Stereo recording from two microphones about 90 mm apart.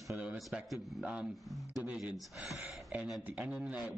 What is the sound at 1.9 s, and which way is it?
Speech, 10° right (ahead or behind).